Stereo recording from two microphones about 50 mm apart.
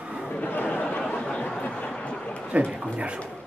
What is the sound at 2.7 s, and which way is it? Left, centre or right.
Speech, right.